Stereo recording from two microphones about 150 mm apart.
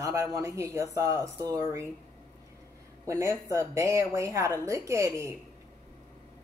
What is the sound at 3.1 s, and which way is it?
A woman's voice, 20° right (ahead or behind).